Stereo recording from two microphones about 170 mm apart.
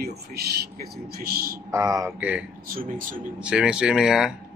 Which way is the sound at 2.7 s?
55° right (ahead or behind).